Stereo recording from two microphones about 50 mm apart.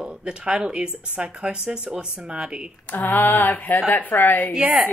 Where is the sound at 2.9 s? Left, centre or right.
Left.